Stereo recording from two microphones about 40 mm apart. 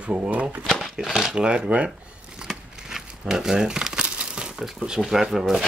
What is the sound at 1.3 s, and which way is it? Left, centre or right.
Speech, right.